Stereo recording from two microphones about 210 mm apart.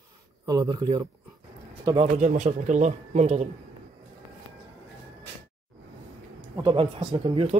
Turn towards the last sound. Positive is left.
turn(degrees=-25)  # may be behind; listen again after turning